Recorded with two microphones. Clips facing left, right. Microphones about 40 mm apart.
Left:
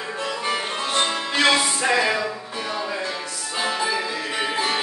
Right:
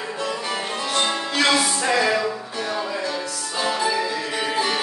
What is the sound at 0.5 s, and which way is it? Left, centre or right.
Music, left.